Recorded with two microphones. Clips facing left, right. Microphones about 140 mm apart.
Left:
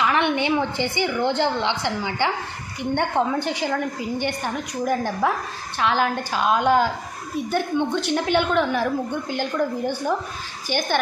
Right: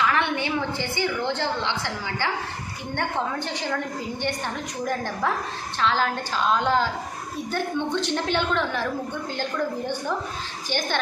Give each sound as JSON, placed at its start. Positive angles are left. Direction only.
{"t": 0.0, "sound": "a woman's voice", "side_deg": 20}